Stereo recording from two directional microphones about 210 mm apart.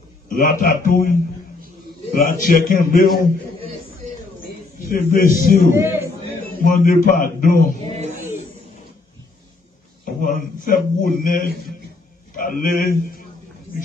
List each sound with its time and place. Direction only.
0.3 s a man's voice: 40° left (ahead or behind)
2.1 s a man's voice: 40° left (ahead or behind)
4.8 s a man's voice: 45° left (ahead or behind)
5.7 s a man's voice: 10° right (ahead or behind)
6.6 s a man's voice: 45° left (ahead or behind)
7.8 s music: 30° right (ahead or behind)
10.0 s a sound: 40° left (ahead or behind)
12.4 s speech: 40° left (ahead or behind)